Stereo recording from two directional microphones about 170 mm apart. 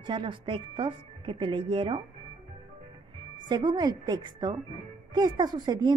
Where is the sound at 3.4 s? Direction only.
25° right (ahead or behind).